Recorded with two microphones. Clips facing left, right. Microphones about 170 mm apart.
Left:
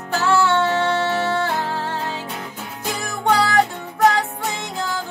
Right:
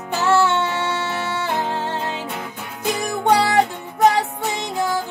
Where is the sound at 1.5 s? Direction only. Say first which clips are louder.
Right 1 dB; 20° right (ahead or behind).